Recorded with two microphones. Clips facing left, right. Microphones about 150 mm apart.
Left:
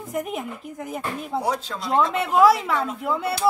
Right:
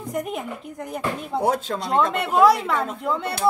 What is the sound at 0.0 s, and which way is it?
A woman's voice, centre (ahead or behind).